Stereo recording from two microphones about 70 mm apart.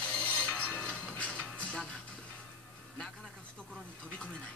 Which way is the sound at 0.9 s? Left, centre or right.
Centre.